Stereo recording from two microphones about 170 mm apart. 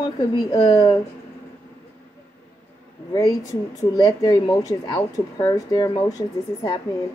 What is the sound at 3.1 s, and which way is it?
Speech, 20° left (ahead or behind).